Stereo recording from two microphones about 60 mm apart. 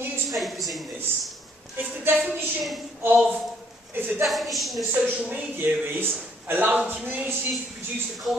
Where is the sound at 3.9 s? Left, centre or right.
Right.